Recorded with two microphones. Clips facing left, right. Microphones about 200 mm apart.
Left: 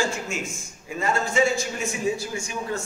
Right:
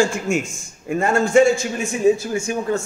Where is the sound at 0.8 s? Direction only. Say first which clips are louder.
Right 7 dB; 55° right (ahead or behind).